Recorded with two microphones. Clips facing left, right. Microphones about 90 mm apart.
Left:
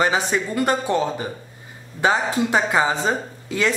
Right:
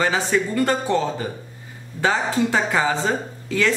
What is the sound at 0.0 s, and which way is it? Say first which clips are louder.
A woman's voice: even; 20° left (ahead or behind).